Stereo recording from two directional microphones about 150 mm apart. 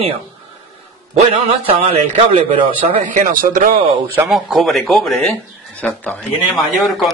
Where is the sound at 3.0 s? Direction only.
65° right (ahead or behind).